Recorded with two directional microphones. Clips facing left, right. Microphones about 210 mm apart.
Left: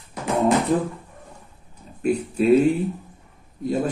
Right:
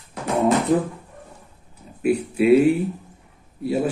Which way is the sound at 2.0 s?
10° right (ahead or behind).